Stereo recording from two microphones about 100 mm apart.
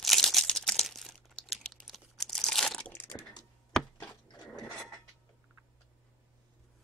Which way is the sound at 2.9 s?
20° left (ahead or behind).